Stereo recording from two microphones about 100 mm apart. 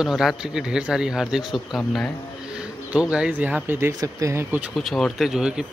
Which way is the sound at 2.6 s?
10° right (ahead or behind).